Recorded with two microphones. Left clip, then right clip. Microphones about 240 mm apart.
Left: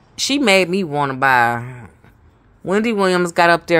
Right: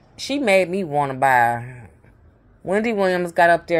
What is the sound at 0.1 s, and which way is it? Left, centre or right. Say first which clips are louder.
Speech: left 3 dB; left.